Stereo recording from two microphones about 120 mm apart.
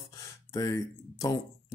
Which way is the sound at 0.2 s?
30° left (ahead or behind).